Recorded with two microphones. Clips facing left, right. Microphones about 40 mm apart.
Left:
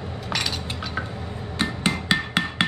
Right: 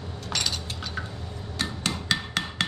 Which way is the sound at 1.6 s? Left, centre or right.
Left.